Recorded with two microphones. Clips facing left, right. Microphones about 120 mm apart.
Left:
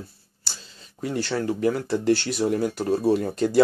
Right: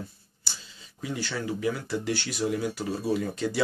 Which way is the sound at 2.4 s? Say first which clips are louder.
Left 5 dB; 45° left (ahead or behind).